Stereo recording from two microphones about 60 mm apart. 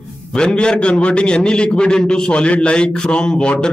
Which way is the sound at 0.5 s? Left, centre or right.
Centre.